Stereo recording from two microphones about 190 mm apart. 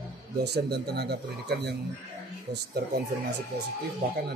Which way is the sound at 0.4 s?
60° right (ahead or behind).